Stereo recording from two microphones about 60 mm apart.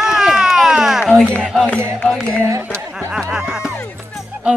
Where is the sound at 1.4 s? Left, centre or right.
Centre.